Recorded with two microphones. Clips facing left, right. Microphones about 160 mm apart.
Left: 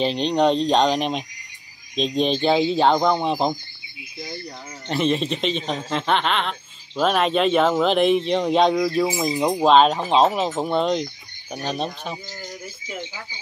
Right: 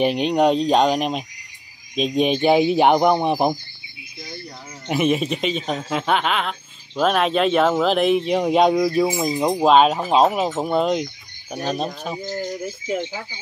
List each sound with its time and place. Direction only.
0.0 s speech: 10° right (ahead or behind)
4.8 s speech: 10° right (ahead or behind)
12.8 s speech: 50° right (ahead or behind)